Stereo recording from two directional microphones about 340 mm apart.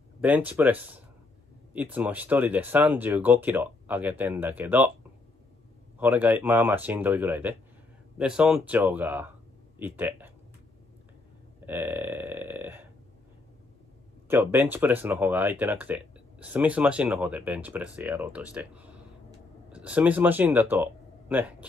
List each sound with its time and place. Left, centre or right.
0.2 s speech: centre
5.9 s speech: centre
11.6 s burping: centre
14.2 s speech: centre